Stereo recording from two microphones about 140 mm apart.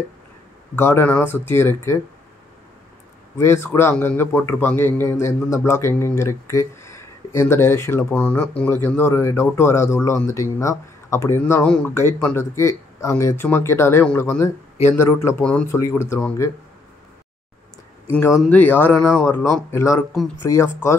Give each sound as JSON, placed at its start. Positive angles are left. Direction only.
{"t": 0.7, "sound": "a man's voice", "side_deg": 15}
{"t": 3.3, "sound": "a man's voice", "side_deg": 20}
{"t": 18.5, "sound": "a man's voice", "side_deg": 15}
{"t": 19.2, "sound": "speech", "side_deg": 20}